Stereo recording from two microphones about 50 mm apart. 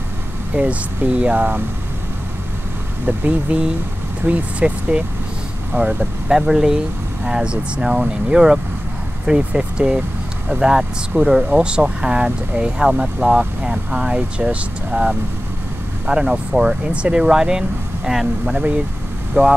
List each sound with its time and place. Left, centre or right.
0.6 s speech: right
3.1 s speech: right
6.3 s speech: centre
19.4 s speech: right